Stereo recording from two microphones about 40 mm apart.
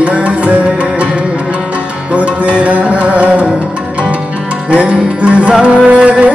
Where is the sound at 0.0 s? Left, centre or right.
Right.